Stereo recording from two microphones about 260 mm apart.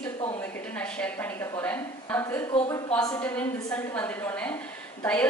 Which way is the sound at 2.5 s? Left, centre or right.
Centre.